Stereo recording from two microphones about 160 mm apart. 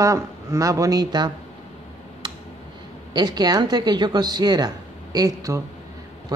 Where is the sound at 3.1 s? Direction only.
25° right (ahead or behind).